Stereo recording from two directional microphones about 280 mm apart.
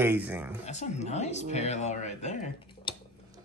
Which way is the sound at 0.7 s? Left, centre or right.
Left.